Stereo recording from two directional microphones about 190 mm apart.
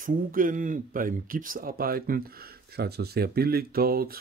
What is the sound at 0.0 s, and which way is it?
Speech, 45° right (ahead or behind).